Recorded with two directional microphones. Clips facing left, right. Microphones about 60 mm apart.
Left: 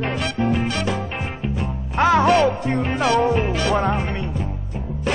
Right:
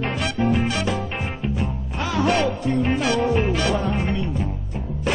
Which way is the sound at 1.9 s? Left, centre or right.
Left.